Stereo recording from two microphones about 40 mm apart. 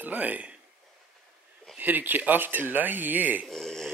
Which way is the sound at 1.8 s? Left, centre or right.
Right.